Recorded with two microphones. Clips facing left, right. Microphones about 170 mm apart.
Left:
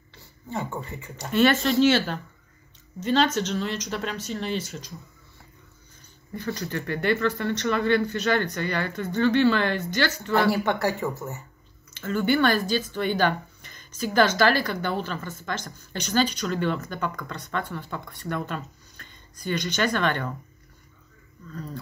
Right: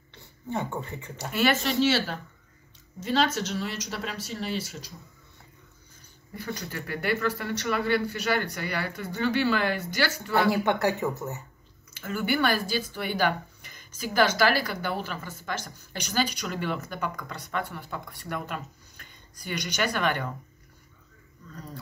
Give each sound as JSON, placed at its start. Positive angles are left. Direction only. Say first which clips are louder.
{"t": 0.1, "sound": "a sound", "louder": "right 3 dB", "side_deg": -20}
{"t": 1.1, "sound": "speech", "louder": "left 5 dB", "side_deg": -5}
{"t": 6.3, "sound": "speech", "louder": "left 5 dB", "side_deg": -10}